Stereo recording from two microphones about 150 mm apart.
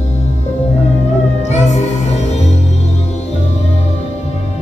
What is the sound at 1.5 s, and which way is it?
Music, 50° left (ahead or behind).